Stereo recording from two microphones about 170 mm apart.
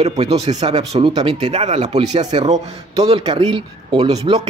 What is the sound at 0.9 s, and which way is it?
A man's voice, 30° right (ahead or behind).